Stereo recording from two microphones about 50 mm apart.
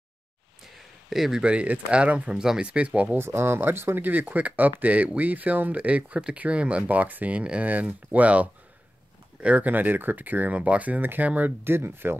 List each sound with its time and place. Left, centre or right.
1.1 s speech: centre
1.4 s speech: right
3.2 s speech: right
11.0 s speech: right
11.7 s speech: right